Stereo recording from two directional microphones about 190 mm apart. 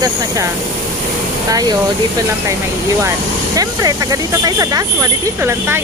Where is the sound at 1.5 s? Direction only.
20° right (ahead or behind).